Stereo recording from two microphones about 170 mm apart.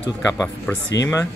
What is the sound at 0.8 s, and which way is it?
Speech, 90° left.